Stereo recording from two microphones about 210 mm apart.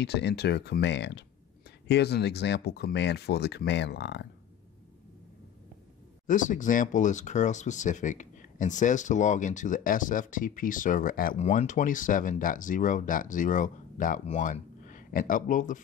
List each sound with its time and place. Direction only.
0.0 s speech: 55° left (ahead or behind)
6.2 s speech: 40° left (ahead or behind)